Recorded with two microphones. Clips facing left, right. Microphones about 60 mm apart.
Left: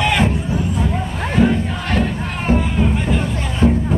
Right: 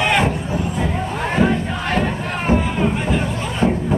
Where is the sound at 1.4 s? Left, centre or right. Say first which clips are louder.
Left 3 dB; centre.